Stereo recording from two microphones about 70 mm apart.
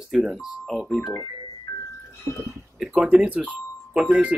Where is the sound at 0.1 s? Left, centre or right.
Centre.